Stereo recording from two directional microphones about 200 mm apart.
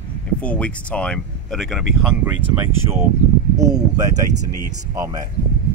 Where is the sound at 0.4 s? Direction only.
5° left (ahead or behind).